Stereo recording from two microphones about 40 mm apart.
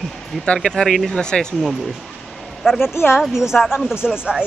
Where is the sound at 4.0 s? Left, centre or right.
Right.